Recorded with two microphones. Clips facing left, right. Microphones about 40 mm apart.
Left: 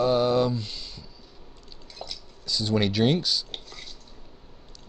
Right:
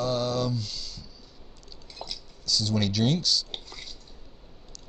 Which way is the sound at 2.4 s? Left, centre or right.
Left.